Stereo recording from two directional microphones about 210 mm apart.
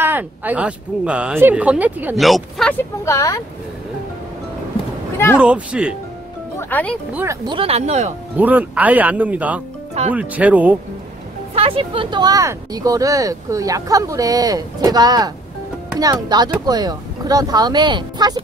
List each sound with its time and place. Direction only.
0.0 s speech: 10° right (ahead or behind)
2.8 s speech: 15° left (ahead or behind)
5.4 s speech: 5° right (ahead or behind)
6.7 s speech: 5° left (ahead or behind)
7.2 s speech: 15° right (ahead or behind)
8.4 s speech: 10° right (ahead or behind)
11.5 s speech: 25° right (ahead or behind)